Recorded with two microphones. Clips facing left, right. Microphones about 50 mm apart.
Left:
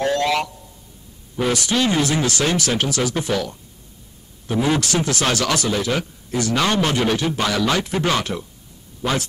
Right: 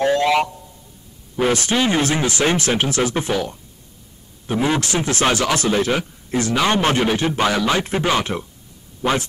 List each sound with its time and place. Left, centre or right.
0.0 s a sound: centre
1.3 s speech: right
4.5 s speech: right
5.6 s a man's voice: right; by 8.3 s centre